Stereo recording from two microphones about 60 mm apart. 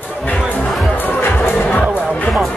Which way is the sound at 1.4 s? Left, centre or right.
Left.